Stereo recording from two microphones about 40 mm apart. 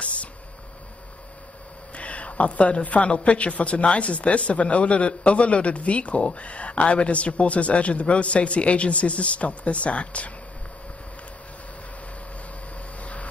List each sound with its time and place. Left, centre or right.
0.0 s a sound: left
2.0 s a woman's voice: left
13.0 s vehicle: left